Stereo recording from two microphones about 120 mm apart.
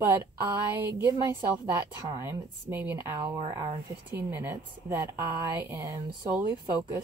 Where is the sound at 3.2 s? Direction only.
40° right (ahead or behind).